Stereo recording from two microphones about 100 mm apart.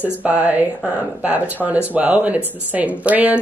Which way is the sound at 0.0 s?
15° right (ahead or behind).